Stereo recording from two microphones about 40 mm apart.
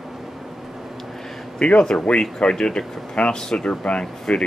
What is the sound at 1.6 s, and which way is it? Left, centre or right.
Speech, left.